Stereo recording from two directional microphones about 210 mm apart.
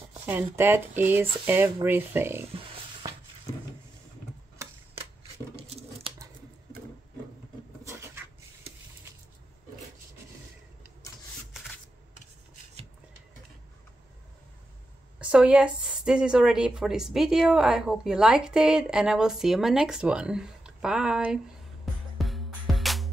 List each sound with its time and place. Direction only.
0.3 s speech: 10° right (ahead or behind)
5.6 s patter: 30° right (ahead or behind)
7.8 s a sound: 15° right (ahead or behind)
15.1 s a woman's voice: 5° right (ahead or behind)
22.2 s music: centre (ahead or behind)